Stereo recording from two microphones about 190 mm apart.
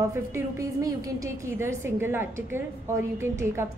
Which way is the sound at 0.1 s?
15° right (ahead or behind).